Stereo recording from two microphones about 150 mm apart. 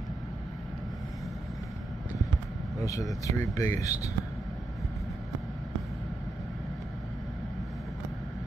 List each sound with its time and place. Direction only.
2.8 s speech: 20° left (ahead or behind)